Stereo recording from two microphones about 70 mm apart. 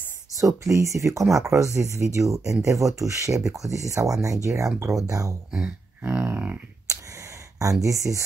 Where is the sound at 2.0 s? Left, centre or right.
Right.